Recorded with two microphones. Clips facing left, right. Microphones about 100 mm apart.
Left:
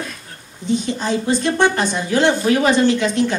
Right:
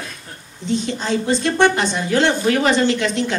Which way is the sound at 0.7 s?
15° left (ahead or behind).